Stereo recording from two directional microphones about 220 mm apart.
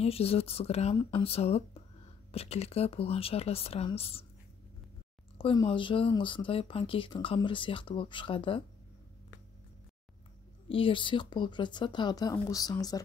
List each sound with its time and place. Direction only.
0.0 s speech: 25° left (ahead or behind)
5.4 s speech: 20° left (ahead or behind)
10.7 s speech: 25° left (ahead or behind)